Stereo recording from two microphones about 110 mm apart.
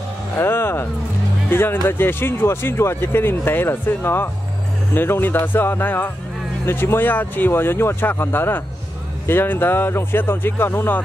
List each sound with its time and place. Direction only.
0.4 s music: 20° left (ahead or behind)
1.5 s speech: 20° left (ahead or behind)